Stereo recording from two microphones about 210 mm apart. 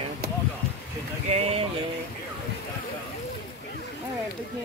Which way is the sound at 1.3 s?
30° right (ahead or behind).